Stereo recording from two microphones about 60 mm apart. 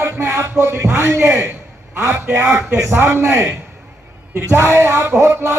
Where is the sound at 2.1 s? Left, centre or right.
Right.